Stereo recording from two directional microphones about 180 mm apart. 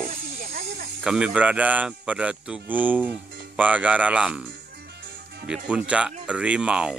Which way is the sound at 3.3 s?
70° right (ahead or behind).